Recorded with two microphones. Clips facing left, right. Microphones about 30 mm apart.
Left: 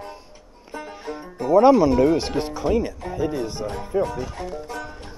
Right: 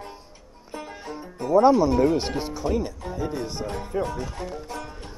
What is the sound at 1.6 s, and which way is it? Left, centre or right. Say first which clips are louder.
Speech: left 3 dB; centre.